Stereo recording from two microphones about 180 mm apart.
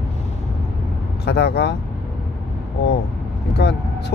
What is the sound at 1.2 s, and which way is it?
Speech, 65° left (ahead or behind).